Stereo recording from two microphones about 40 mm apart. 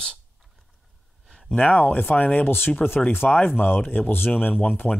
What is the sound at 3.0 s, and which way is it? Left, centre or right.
Speech, left.